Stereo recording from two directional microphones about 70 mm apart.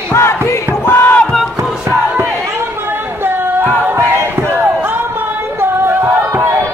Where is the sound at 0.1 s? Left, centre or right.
Left.